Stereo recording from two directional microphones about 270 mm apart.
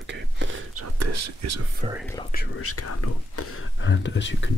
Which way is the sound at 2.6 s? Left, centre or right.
Left.